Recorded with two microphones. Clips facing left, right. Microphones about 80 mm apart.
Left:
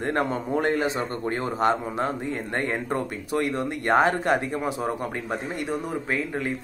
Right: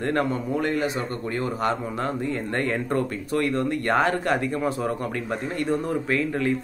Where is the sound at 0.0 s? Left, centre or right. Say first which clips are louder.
Right 1 dB; left.